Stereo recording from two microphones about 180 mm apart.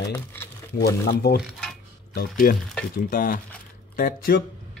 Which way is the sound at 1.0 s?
65° left (ahead or behind).